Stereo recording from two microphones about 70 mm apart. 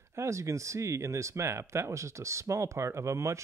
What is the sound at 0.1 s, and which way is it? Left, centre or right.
Speech, right.